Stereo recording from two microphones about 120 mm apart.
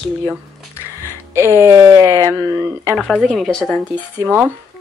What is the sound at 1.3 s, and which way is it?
A woman's voice, 20° right (ahead or behind).